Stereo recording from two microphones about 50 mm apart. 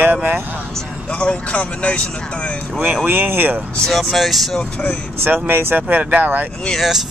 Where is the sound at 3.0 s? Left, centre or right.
Right.